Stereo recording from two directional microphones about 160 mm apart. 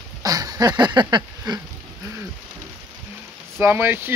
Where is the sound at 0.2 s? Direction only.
25° right (ahead or behind).